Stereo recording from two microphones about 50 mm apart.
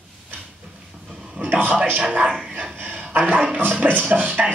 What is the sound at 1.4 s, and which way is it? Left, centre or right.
Speech, right.